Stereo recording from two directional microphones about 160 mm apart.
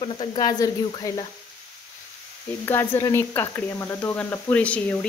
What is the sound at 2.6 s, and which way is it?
Speech, 15° left (ahead or behind).